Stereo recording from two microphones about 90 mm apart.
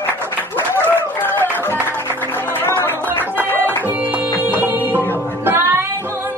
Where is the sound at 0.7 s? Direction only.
20° left (ahead or behind).